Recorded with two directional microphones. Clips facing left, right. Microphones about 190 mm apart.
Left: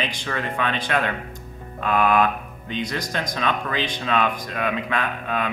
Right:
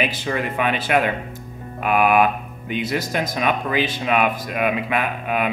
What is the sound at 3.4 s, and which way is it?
Speech, 15° right (ahead or behind).